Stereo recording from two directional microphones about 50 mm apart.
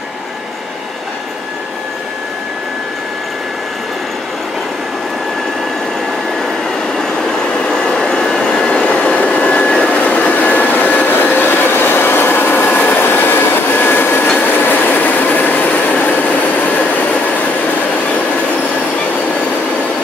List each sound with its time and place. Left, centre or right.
6.9 s train: centre
9.3 s vehicle: left
14.4 s train: left